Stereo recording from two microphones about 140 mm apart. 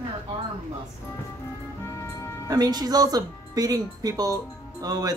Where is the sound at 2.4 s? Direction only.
25° right (ahead or behind).